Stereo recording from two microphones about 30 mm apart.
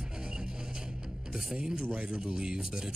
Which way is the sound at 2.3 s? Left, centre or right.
Right.